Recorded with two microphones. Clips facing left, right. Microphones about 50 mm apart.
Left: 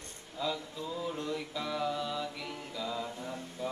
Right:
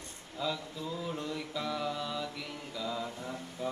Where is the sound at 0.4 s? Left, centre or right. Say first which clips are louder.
Even; centre.